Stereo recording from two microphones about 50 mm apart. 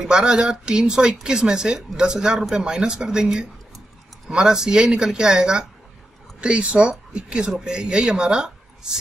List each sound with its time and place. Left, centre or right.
0.0 s speech: centre